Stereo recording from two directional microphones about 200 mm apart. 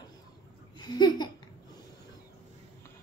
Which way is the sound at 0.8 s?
20° left (ahead or behind).